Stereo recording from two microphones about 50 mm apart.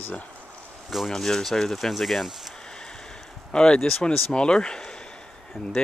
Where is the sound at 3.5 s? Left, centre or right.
Centre.